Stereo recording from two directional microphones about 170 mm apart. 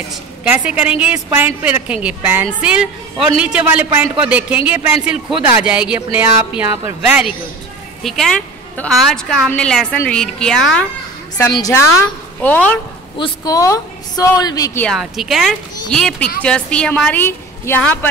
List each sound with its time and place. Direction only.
0.1 s a woman's voice: 10° right (ahead or behind)
11.5 s a woman's voice: 20° left (ahead or behind)
13.2 s a woman's voice: 20° left (ahead or behind)
14.9 s a woman's voice: centre (ahead or behind)